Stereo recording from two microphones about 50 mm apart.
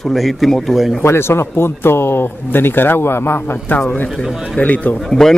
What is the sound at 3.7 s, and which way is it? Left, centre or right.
A man's voice, left.